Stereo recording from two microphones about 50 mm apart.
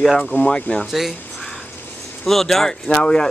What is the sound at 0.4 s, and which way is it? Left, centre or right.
Speech, left.